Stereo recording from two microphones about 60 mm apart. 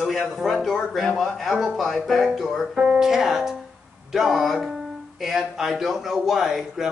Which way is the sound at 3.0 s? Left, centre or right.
Centre.